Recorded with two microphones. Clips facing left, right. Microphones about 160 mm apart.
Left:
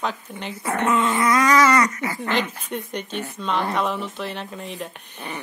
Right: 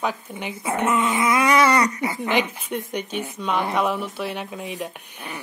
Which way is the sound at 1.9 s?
15° right (ahead or behind).